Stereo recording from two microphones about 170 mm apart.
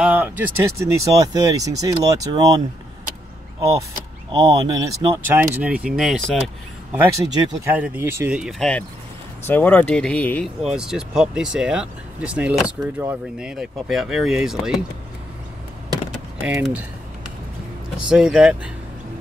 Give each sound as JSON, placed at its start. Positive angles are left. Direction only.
{"t": 0.0, "sound": "speech", "side_deg": -10}
{"t": 4.3, "sound": "speech", "side_deg": -20}
{"t": 10.6, "sound": "speech", "side_deg": -5}
{"t": 16.4, "sound": "speech", "side_deg": -5}
{"t": 18.1, "sound": "speech", "side_deg": -5}